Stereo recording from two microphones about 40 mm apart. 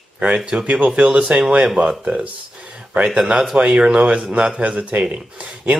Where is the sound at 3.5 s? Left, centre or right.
Right.